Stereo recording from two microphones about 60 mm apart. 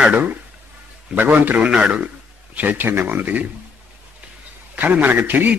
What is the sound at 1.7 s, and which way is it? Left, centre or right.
Speech, centre.